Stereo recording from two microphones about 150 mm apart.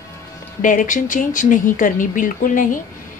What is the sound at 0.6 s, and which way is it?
Speech, 60° left (ahead or behind).